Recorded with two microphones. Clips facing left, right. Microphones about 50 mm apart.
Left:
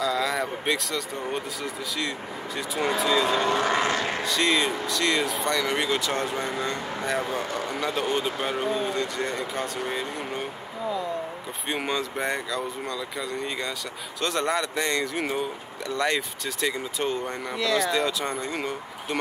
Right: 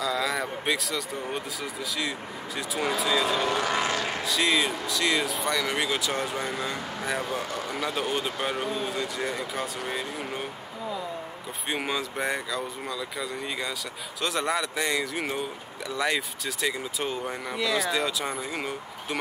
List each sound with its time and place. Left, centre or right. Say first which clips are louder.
0.0 s speech: left 2 dB; centre
3.4 s speech: left 3 dB; left
4.3 s speech: left 1 dB; centre
11.7 s speech: left 2 dB; centre